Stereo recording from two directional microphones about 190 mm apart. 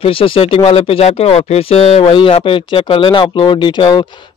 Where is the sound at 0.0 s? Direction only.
30° left (ahead or behind).